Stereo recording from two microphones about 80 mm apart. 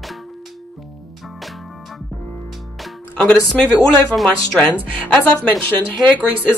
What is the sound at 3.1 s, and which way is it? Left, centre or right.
Music, centre.